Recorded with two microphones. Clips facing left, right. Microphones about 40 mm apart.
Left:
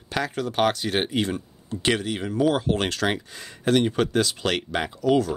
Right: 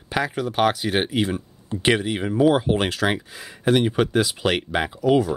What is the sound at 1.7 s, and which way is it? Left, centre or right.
Speech, centre.